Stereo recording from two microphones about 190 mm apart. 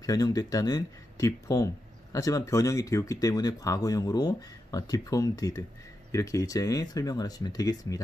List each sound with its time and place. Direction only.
0.0 s speech: 20° left (ahead or behind)